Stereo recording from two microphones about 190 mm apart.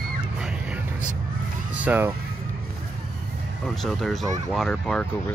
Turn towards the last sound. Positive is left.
turn(degrees=5)  # may be behind; listen again after turning